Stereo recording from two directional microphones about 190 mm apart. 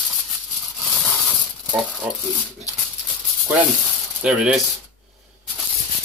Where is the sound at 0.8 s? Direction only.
Centre (ahead or behind).